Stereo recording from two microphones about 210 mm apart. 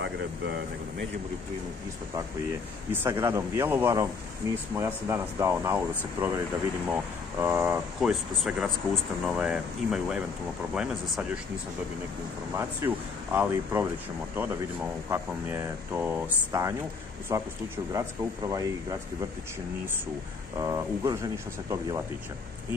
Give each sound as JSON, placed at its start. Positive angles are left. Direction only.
{"t": 2.9, "sound": "speech", "side_deg": -10}
{"t": 6.9, "sound": "speech", "side_deg": -10}
{"t": 12.5, "sound": "speech", "side_deg": -10}
{"t": 20.5, "sound": "speech", "side_deg": -15}